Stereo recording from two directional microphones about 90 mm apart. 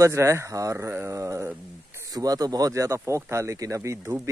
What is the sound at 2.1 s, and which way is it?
A man's voice, 45° right (ahead or behind).